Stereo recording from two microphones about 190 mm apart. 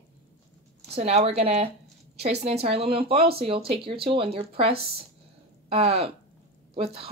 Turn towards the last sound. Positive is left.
turn(degrees=-30)  # may be behind; listen again after turning